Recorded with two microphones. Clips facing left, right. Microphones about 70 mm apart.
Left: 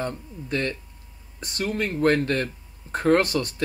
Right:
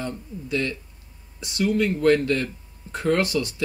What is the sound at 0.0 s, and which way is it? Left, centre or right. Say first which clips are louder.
Speech: left 1 dB; left.